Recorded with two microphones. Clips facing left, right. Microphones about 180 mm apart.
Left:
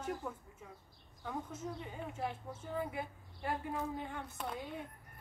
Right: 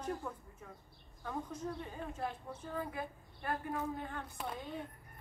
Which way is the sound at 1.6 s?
15° left (ahead or behind).